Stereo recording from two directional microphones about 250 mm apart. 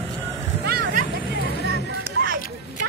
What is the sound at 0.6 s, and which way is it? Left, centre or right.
Hubbub, right.